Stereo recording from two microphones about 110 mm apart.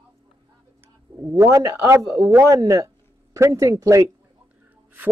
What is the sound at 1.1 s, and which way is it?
Speech, 25° right (ahead or behind).